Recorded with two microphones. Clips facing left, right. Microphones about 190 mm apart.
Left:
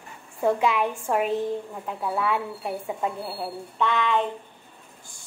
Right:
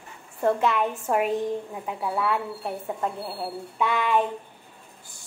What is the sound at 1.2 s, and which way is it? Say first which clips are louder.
A woman's voice: even; 5° right (ahead or behind).